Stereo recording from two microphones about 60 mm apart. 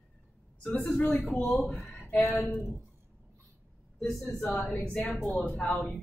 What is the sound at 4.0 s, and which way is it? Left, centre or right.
Speech, centre.